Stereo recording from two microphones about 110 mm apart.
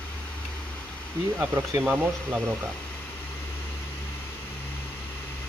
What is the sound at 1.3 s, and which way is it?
Speech, 20° right (ahead or behind).